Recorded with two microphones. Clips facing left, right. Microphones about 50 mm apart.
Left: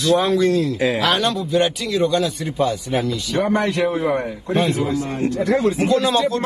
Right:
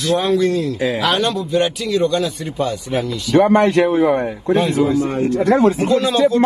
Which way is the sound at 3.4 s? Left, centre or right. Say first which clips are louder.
Right 6 dB; right.